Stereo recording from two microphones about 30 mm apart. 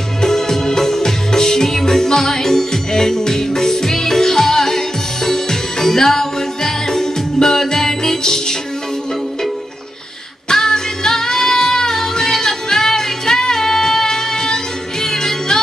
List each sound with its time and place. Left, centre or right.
0.2 s music: centre
10.5 s music: centre